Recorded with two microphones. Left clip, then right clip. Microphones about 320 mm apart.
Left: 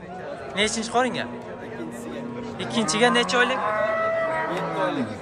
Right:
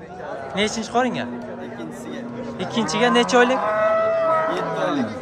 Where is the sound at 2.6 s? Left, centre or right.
Centre.